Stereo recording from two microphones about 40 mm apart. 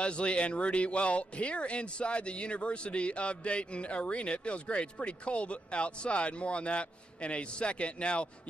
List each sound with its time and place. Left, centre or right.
0.0 s speech: left